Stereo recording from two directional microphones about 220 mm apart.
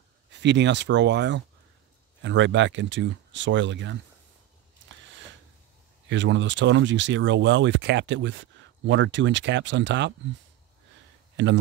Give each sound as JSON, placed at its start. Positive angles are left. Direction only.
{"t": 0.3, "sound": "speech", "side_deg": -55}
{"t": 6.0, "sound": "speech", "side_deg": -55}
{"t": 11.4, "sound": "speech", "side_deg": -55}